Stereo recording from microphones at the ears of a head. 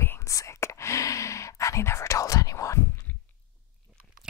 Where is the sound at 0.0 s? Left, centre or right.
Left.